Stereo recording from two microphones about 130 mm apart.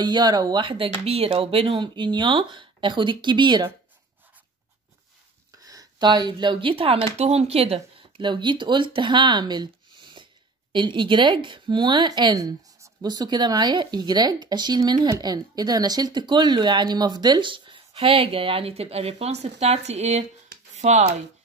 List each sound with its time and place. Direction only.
0.0 s speech: 35° right (ahead or behind); by 1.8 s 50° right (ahead or behind)
1.8 s speech: 35° right (ahead or behind)
5.7 s speech: 30° right (ahead or behind); by 7.8 s 50° right (ahead or behind)
8.2 s speech: 35° right (ahead or behind); by 20.2 s 60° right (ahead or behind)
20.7 s a sound: 60° right (ahead or behind)